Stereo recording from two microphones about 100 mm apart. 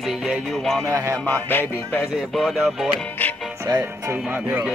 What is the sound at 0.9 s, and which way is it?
Music, 30° right (ahead or behind).